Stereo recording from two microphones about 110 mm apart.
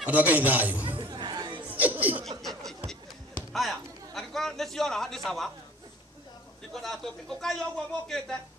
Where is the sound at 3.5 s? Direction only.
Centre (ahead or behind).